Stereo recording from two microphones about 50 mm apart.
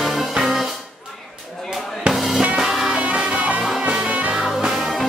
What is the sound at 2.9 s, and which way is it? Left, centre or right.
Music, right.